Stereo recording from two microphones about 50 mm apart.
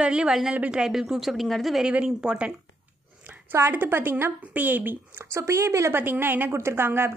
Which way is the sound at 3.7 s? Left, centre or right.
Right.